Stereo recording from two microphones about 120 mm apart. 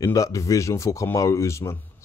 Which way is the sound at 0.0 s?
30° left (ahead or behind).